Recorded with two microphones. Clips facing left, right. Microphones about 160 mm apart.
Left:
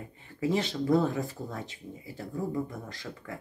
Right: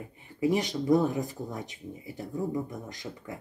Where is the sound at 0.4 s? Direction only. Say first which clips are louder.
Right 2 dB; 15° right (ahead or behind).